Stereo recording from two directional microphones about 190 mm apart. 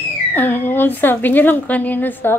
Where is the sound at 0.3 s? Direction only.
10° left (ahead or behind).